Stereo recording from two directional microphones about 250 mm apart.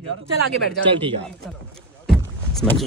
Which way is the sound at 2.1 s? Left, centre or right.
Centre.